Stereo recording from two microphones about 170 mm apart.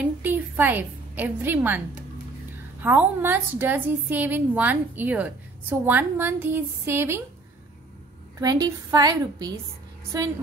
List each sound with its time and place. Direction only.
0.0 s a woman's voice: 10° right (ahead or behind)
2.8 s a woman's voice: 10° right (ahead or behind)
8.4 s a woman's voice: 20° right (ahead or behind)